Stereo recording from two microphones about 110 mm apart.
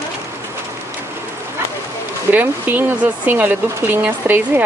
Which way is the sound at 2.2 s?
15° right (ahead or behind).